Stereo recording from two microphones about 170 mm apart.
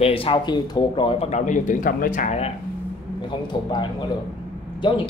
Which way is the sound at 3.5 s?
25° left (ahead or behind).